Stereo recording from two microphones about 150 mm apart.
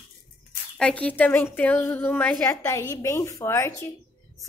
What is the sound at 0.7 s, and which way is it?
A woman's voice, 5° left (ahead or behind).